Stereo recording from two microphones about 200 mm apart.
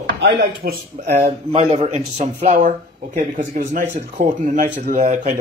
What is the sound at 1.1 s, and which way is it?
Speech, 35° right (ahead or behind).